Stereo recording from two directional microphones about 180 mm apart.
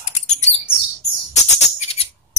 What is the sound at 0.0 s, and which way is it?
Chirp, 40° left (ahead or behind).